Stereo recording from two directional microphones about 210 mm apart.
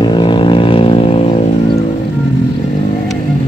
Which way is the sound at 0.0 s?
20° left (ahead or behind).